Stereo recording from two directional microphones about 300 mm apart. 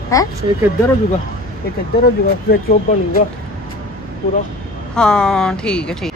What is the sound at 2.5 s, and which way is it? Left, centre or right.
Speech, left.